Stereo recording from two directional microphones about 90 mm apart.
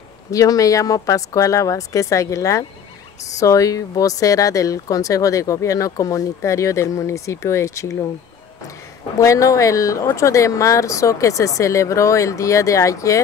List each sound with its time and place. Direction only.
0.3 s speech: 40° left (ahead or behind)
9.2 s speech: 35° left (ahead or behind)